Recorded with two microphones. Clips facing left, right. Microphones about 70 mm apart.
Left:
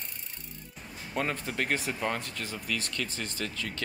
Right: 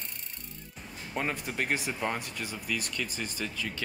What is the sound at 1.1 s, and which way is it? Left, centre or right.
Speech, centre.